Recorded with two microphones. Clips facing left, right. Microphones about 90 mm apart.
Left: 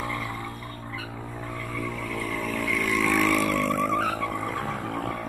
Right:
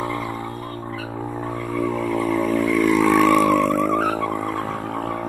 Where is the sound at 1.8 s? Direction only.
45° right (ahead or behind).